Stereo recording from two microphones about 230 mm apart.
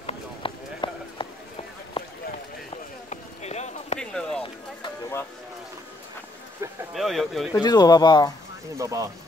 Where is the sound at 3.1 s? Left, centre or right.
Left.